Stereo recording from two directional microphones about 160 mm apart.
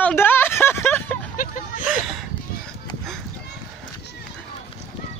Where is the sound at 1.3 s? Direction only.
55° left (ahead or behind).